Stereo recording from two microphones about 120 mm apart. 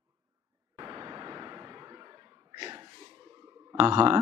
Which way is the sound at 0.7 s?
30° right (ahead or behind).